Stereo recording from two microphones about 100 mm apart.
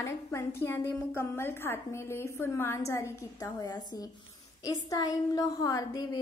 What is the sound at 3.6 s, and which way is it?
A woman's voice, 45° left (ahead or behind).